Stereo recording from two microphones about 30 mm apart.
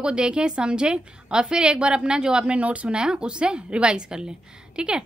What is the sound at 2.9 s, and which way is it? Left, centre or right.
A woman's voice, right.